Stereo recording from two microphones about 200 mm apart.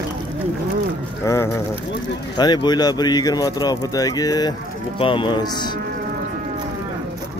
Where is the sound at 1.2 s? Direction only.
15° left (ahead or behind).